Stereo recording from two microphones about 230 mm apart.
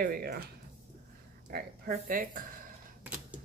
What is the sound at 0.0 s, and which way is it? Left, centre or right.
Speech, right.